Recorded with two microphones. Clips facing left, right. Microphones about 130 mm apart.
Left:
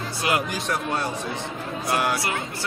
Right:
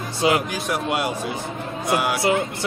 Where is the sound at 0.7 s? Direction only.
10° right (ahead or behind).